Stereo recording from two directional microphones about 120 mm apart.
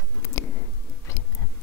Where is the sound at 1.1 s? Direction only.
25° left (ahead or behind).